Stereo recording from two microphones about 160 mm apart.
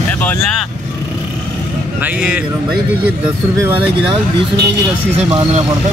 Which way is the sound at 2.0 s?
10° right (ahead or behind).